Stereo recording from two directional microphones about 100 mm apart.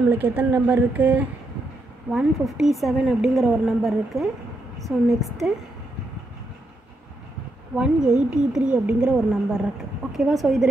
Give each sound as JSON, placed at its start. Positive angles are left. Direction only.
{"t": 0.1, "sound": "speech", "side_deg": -20}
{"t": 2.0, "sound": "a woman's voice", "side_deg": -10}
{"t": 7.7, "sound": "a woman's voice", "side_deg": -5}